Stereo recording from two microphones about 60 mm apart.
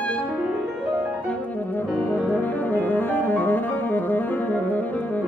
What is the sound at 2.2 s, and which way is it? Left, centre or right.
Music, left.